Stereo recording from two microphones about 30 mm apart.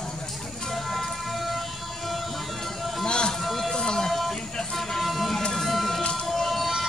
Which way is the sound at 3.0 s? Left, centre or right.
Left.